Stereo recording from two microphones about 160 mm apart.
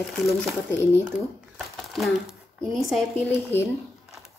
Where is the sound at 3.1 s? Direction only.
15° left (ahead or behind).